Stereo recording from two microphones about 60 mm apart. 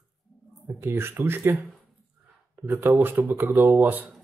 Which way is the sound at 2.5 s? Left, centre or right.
Right.